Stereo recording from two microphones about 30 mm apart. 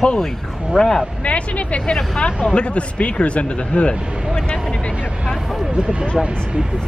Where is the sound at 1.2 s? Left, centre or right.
Left.